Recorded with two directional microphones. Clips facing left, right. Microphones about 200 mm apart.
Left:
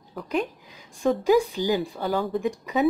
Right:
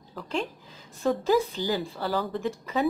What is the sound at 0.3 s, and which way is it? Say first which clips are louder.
A woman's voice: left 4 dB; 15° left (ahead or behind).